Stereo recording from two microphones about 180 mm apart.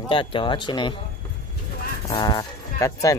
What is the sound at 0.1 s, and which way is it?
Speech, 30° left (ahead or behind).